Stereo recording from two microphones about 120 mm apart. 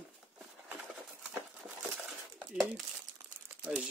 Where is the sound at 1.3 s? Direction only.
10° right (ahead or behind).